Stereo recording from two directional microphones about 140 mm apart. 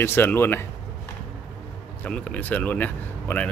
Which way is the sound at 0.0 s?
15° left (ahead or behind).